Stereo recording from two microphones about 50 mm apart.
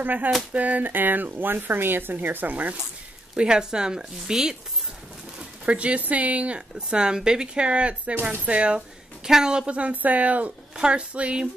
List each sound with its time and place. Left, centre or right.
0.0 s speech: right
3.3 s speech: centre
5.7 s a woman's voice: right; by 9.7 s centre
9.7 s speech: right